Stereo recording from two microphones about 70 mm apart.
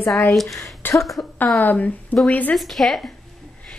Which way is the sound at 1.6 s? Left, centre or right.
Left.